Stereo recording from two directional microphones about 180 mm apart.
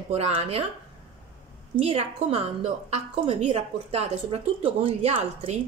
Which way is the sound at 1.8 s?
35° right (ahead or behind).